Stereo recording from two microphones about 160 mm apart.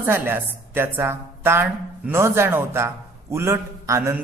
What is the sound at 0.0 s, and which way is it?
Speech, 10° right (ahead or behind).